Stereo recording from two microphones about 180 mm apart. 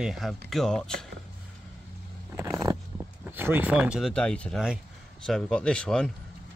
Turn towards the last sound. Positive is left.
turn(degrees=5)  # may be behind; listen again after turning